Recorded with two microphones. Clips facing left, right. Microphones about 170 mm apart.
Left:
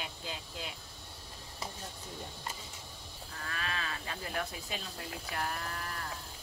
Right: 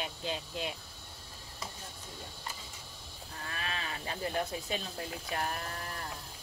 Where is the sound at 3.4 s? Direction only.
20° right (ahead or behind).